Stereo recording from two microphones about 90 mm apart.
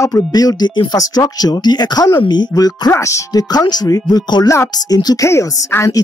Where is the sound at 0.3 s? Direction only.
45° left (ahead or behind).